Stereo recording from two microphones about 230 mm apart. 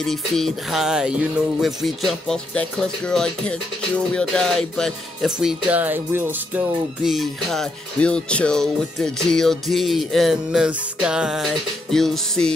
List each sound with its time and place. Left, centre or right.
0.0 s speech: centre